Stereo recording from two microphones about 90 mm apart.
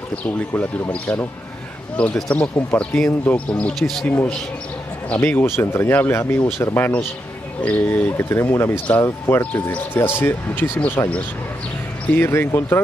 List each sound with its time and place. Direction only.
0.8 s speech: 20° left (ahead or behind)
3.8 s speech: 5° left (ahead or behind)
4.1 s speech: 15° left (ahead or behind)